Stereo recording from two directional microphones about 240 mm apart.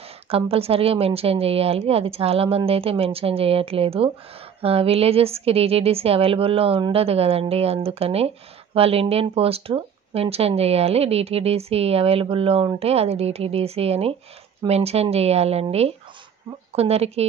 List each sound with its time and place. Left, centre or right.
0.3 s speech: right